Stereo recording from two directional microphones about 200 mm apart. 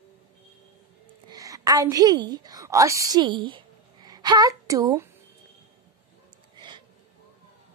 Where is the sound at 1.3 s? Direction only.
15° right (ahead or behind).